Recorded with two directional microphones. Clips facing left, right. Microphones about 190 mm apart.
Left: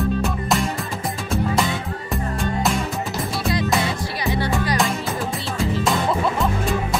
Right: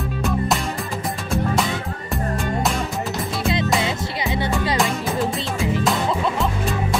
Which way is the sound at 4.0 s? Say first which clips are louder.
Even; 20° right (ahead or behind).